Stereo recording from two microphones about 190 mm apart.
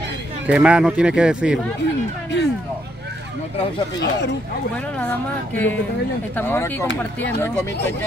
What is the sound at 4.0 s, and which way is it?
Speech, 65° left (ahead or behind).